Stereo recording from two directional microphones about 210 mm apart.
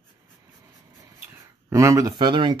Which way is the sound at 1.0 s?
15° right (ahead or behind).